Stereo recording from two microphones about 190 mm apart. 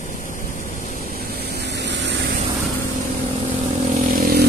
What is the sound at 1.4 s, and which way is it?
Vehicle, 60° right (ahead or behind).